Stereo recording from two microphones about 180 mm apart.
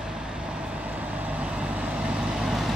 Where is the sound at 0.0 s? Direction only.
5° right (ahead or behind).